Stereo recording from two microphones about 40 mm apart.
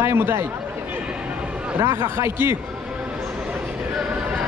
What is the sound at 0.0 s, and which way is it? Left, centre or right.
Speech, right.